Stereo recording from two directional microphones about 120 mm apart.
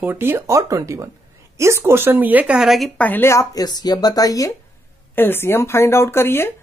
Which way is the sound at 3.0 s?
15° left (ahead or behind).